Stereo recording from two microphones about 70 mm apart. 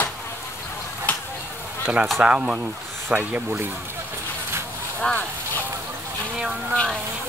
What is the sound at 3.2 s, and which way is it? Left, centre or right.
Speech, right.